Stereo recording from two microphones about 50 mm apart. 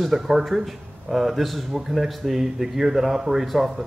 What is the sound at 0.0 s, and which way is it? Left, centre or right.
Speech, centre.